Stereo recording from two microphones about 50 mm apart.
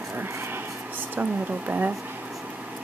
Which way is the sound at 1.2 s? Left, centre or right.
Right.